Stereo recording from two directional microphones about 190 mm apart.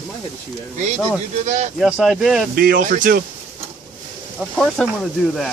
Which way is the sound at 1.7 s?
5° right (ahead or behind).